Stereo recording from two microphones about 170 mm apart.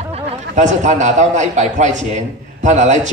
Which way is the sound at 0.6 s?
45° right (ahead or behind).